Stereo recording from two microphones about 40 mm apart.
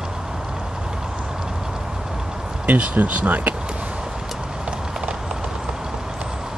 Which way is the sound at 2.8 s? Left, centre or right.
Right.